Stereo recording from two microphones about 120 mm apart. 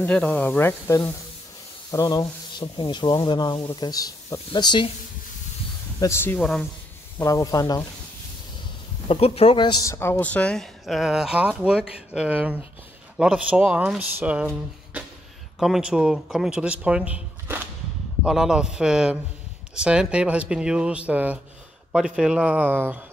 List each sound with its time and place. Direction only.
0.0 s speech: 10° left (ahead or behind)
1.9 s sanding: 30° left (ahead or behind)
5.9 s speech: 20° left (ahead or behind)
6.4 s speech: 5° left (ahead or behind)
7.2 s speech: 25° left (ahead or behind)
9.0 s a man's voice: 50° left (ahead or behind)
9.8 s speech: 20° left (ahead or behind); by 22.9 s 15° right (ahead or behind)